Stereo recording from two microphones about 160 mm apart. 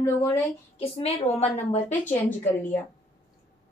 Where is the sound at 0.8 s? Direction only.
40° left (ahead or behind).